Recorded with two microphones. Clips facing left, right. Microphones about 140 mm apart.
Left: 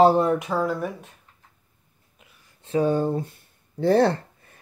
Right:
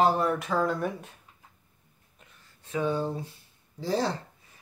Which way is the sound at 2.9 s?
50° left (ahead or behind).